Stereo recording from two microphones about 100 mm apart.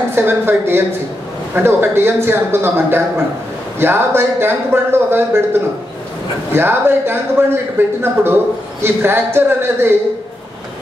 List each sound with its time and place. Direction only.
0.1 s speech: 20° right (ahead or behind)